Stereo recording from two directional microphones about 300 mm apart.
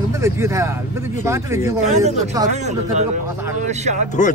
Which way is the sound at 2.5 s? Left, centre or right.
Right.